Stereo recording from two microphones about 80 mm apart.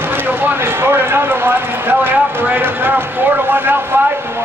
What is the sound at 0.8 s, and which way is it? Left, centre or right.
Speech, right.